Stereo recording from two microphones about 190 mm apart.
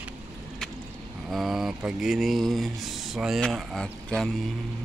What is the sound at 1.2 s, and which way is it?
Speech, centre (ahead or behind).